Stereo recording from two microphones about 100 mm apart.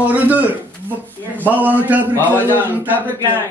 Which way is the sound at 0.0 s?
15° right (ahead or behind).